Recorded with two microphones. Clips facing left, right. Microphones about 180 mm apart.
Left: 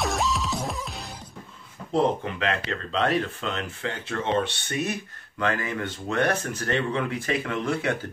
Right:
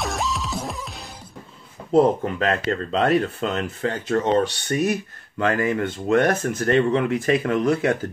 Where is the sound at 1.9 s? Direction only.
40° right (ahead or behind).